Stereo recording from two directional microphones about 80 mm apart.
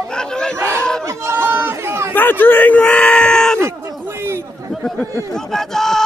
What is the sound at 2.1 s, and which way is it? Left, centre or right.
Speech, left.